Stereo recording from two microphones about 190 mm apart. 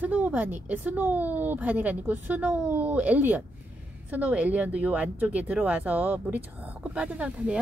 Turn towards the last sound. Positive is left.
turn(degrees=-5)  # may be behind; listen again after turning